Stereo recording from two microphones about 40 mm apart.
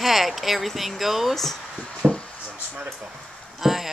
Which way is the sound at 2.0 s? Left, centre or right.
Right.